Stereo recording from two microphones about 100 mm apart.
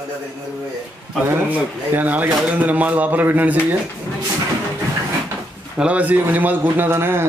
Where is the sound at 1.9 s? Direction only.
15° right (ahead or behind).